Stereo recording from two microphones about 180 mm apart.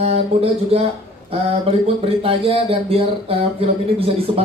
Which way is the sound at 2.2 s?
30° right (ahead or behind).